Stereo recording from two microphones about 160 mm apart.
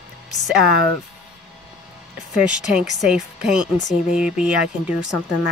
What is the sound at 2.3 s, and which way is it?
Speech, 5° right (ahead or behind).